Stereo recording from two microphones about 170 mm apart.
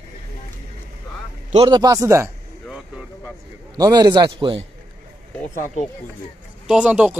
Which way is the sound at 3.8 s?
25° right (ahead or behind).